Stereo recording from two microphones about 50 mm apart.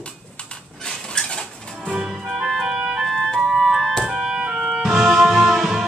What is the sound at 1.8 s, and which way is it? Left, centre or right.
Music, right.